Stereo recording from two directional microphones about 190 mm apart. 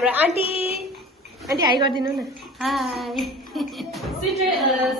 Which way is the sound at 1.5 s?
25° right (ahead or behind).